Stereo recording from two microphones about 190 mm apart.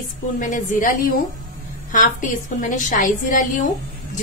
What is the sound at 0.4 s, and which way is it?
Speech, 45° left (ahead or behind).